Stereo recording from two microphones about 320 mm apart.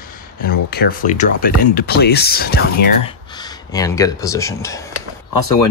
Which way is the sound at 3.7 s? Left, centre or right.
Centre.